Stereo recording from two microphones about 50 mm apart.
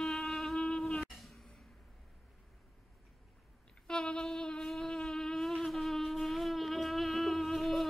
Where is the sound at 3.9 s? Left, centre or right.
Centre.